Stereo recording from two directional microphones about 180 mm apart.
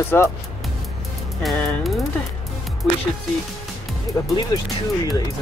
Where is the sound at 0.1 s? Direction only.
10° left (ahead or behind).